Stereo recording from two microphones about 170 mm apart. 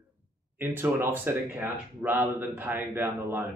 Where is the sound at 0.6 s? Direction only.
10° right (ahead or behind).